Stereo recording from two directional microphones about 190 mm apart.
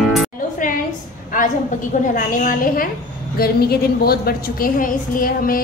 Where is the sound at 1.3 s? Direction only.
45° left (ahead or behind).